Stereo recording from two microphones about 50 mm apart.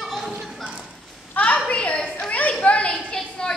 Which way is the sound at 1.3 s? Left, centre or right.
Left.